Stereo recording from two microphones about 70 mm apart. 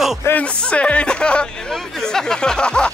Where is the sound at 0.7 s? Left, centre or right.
Centre.